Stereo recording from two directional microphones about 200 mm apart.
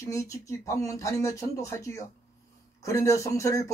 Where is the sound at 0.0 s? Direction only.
15° left (ahead or behind).